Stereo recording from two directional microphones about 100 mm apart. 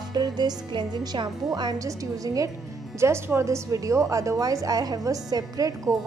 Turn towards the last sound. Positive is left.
turn(degrees=-35)  # may be behind; listen again after turning